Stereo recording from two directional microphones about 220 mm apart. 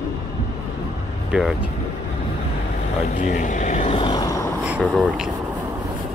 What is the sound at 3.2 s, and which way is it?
Vehicle, 35° left (ahead or behind).